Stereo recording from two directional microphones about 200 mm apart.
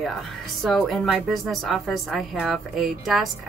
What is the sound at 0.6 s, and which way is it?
A woman's voice, centre (ahead or behind).